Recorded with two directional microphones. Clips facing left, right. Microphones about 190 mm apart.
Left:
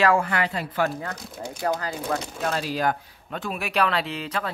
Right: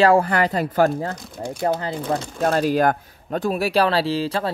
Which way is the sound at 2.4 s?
45° right (ahead or behind).